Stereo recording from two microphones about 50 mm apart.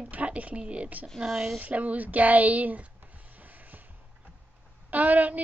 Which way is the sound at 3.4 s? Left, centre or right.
Right.